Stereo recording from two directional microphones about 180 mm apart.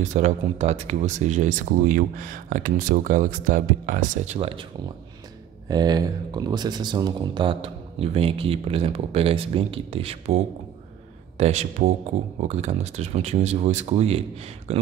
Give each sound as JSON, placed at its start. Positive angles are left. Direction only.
{"t": 0.0, "sound": "speech", "side_deg": -40}
{"t": 4.4, "sound": "speech", "side_deg": -30}